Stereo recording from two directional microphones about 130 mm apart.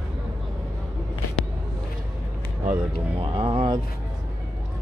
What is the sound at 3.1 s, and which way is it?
Speech, 45° right (ahead or behind).